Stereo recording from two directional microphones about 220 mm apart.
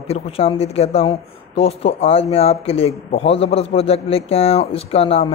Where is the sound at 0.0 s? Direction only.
25° left (ahead or behind).